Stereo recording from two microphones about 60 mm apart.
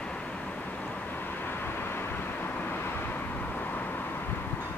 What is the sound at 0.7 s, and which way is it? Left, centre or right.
Vehicle, left.